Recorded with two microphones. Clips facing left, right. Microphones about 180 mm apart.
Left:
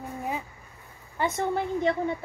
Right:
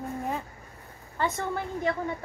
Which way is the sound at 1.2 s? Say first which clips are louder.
Left 3 dB; 15° left (ahead or behind).